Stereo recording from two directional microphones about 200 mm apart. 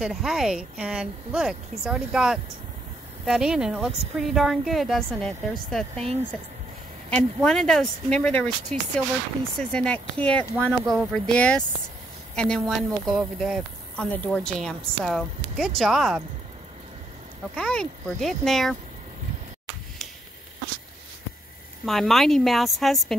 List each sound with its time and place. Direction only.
0.0 s speech: centre (ahead or behind)
7.4 s speech: 5° left (ahead or behind)
17.6 s speech: 5° left (ahead or behind)
21.8 s speech: centre (ahead or behind)